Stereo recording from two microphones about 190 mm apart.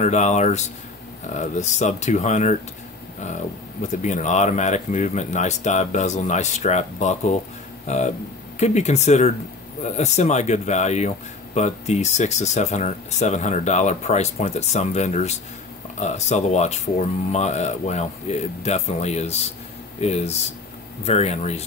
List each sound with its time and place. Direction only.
0.0 s speech: 40° left (ahead or behind)
3.9 s speech: 40° left (ahead or behind)
8.5 s speech: 35° left (ahead or behind)